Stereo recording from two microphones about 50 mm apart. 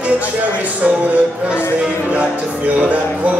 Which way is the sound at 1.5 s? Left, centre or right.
Right.